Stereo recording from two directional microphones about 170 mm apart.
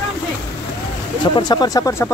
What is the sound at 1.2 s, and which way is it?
Speech, 25° left (ahead or behind).